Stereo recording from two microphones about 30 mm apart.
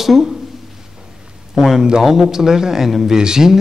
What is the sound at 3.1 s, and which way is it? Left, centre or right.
Speech, right.